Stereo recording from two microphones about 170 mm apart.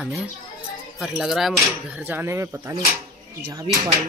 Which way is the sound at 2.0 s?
15° right (ahead or behind).